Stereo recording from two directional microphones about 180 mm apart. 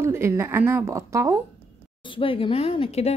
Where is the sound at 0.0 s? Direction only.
15° right (ahead or behind).